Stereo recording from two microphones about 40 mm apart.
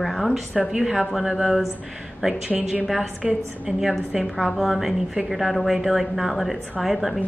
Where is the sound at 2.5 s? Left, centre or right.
Right.